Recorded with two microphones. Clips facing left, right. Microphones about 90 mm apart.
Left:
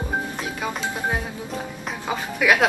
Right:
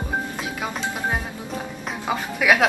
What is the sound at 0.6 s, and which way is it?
Music, centre (ahead or behind).